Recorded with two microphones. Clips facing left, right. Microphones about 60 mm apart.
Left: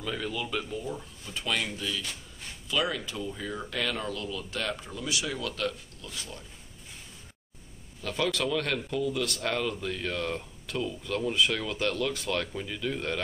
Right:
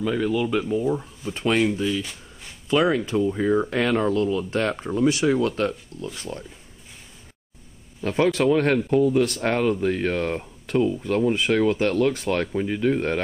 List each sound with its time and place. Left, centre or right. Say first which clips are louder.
0.0 s speech: right 11 dB; centre
0.7 s speech: right 12 dB; right
1.8 s speech: right 10 dB; right
2.7 s speech: right 10 dB; right
8.0 s speech: right 9 dB; right